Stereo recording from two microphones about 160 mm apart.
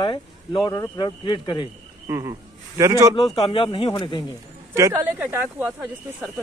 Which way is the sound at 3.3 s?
30° left (ahead or behind).